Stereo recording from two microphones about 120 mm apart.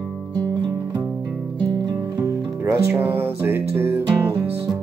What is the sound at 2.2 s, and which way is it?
Music, 15° right (ahead or behind).